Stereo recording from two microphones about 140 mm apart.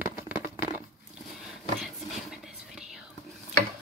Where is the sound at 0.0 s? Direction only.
15° right (ahead or behind).